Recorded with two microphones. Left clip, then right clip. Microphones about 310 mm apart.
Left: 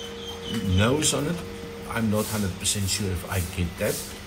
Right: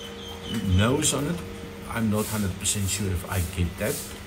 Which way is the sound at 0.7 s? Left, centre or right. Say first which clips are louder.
Left 1 dB; centre.